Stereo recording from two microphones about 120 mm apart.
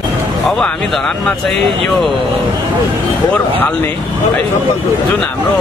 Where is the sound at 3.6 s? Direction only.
15° left (ahead or behind).